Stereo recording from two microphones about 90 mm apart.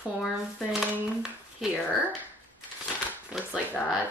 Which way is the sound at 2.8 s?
5° right (ahead or behind).